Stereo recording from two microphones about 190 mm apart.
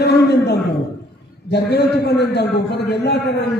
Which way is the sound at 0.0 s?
60° left (ahead or behind).